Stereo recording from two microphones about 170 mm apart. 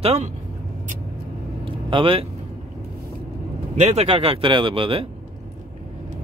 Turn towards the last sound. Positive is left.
turn(degrees=-30)  # may be behind; listen again after turning